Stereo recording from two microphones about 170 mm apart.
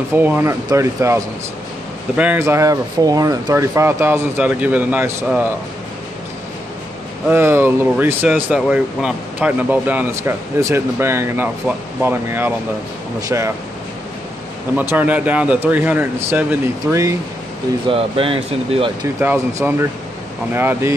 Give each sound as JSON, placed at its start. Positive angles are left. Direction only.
{"t": 0.1, "sound": "speech", "side_deg": -15}
{"t": 7.2, "sound": "speech", "side_deg": -15}
{"t": 14.8, "sound": "speech", "side_deg": -10}
{"t": 17.8, "sound": "speech", "side_deg": -35}
{"t": 19.1, "sound": "speech", "side_deg": -10}